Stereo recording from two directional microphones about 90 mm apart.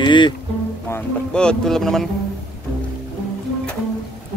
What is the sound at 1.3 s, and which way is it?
Speech, 10° left (ahead or behind).